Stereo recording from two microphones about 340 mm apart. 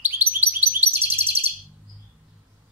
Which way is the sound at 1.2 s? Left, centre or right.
Centre.